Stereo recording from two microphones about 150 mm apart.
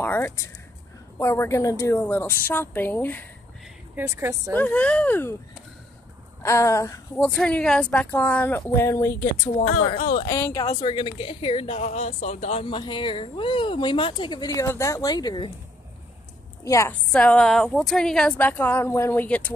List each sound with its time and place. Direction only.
0.0 s a sound: 20° left (ahead or behind)
1.1 s a woman's voice: 15° left (ahead or behind)
3.9 s a woman's voice: 15° right (ahead or behind)
4.6 s a woman's voice: 10° left (ahead or behind)
6.4 s speech: 20° left (ahead or behind)
7.2 s a woman's voice: 5° left (ahead or behind)
9.6 s speech: 50° left (ahead or behind)
10.3 s speech: 20° left (ahead or behind)
10.8 s speech: 35° left (ahead or behind)
16.6 s speech: 20° left (ahead or behind)
17.1 s a woman's voice: 5° left (ahead or behind)